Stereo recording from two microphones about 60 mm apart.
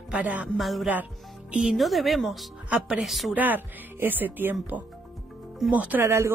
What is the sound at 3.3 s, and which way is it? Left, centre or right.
Speech, right.